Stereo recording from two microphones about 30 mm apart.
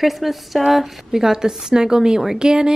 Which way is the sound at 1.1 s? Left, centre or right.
Centre.